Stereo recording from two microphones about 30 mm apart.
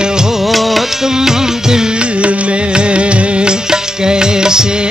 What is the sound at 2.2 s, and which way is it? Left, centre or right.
Music, right.